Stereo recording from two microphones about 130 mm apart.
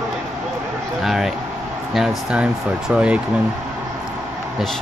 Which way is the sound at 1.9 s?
5° right (ahead or behind).